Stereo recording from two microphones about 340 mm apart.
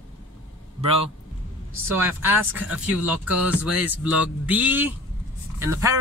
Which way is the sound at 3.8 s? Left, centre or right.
Centre.